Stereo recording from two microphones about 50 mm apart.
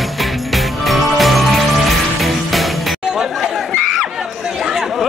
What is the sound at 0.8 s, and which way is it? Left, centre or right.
Music, centre.